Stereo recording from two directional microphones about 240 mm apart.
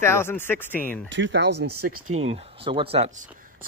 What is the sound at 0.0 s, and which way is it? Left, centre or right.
Speech, centre.